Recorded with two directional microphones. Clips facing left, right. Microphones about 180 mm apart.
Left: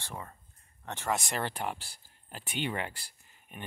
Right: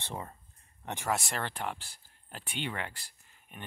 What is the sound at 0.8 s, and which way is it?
Speech, 15° right (ahead or behind).